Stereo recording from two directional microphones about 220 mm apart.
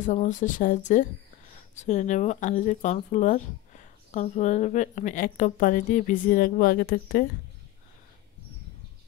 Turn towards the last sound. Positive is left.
turn(degrees=40)  # may be behind; listen again after turning